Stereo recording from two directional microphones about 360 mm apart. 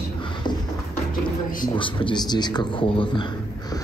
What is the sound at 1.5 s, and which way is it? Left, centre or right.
A man's voice, centre.